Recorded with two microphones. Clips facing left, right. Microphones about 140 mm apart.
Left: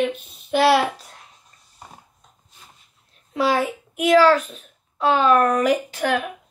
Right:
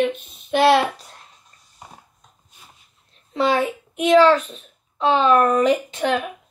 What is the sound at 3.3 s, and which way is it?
A child's voice, 5° left (ahead or behind).